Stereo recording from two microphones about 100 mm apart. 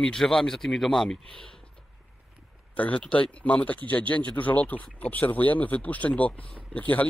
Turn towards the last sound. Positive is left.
turn(degrees=15)  # may be behind; listen again after turning